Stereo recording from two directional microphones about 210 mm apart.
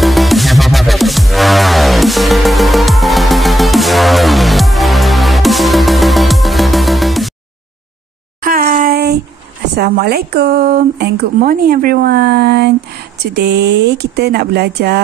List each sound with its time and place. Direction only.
0.0 s music: centre (ahead or behind)
8.4 s a sound: 45° right (ahead or behind)
9.8 s speech: 45° right (ahead or behind)